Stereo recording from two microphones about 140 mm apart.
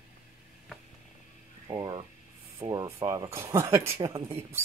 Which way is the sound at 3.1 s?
20° right (ahead or behind).